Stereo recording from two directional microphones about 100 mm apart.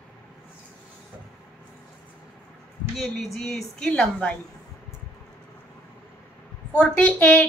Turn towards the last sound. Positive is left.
turn(degrees=15)  # may be behind; listen again after turning